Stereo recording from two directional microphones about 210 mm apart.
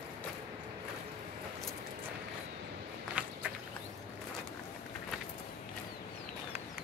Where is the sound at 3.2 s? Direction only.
5° right (ahead or behind).